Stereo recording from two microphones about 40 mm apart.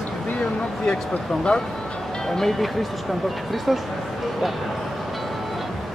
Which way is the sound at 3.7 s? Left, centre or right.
Centre.